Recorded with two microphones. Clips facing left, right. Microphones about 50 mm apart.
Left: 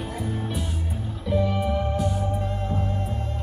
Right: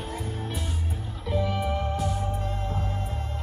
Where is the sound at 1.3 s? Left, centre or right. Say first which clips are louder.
Left 3 dB; centre.